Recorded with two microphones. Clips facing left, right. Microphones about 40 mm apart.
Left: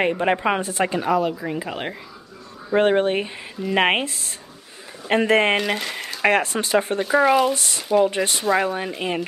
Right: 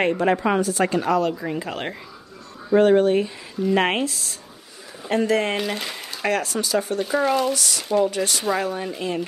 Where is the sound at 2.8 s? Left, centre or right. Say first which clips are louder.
Right 2 dB; left.